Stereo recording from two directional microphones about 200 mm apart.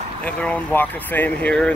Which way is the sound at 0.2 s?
5° left (ahead or behind).